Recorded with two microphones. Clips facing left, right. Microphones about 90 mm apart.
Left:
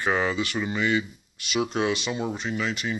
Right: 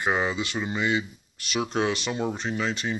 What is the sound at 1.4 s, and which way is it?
Speech, 35° right (ahead or behind).